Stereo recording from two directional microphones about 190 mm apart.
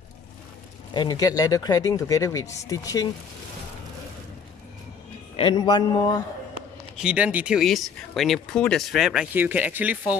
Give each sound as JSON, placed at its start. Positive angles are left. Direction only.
{"t": 0.9, "sound": "speech", "side_deg": 20}
{"t": 5.3, "sound": "speech", "side_deg": 25}
{"t": 7.0, "sound": "speech", "side_deg": -5}